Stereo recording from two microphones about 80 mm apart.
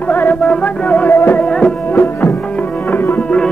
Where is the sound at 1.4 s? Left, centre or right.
Centre.